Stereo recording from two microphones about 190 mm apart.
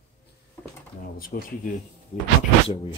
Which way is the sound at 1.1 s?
50° left (ahead or behind).